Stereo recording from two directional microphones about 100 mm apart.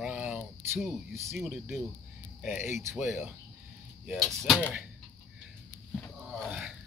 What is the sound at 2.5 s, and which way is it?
Speech, 25° right (ahead or behind).